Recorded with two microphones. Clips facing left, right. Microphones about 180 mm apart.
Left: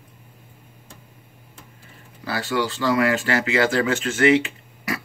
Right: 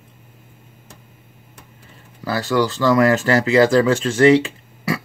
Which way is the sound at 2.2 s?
40° right (ahead or behind).